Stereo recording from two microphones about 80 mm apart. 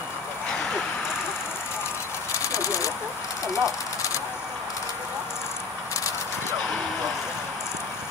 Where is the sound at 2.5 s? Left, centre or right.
Left.